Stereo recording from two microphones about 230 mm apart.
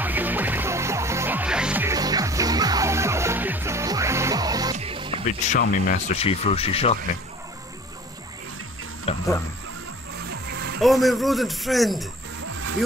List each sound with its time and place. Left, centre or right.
0.0 s music: centre
5.2 s speech: left
9.1 s speech: left
10.3 s music: right
10.8 s speech: centre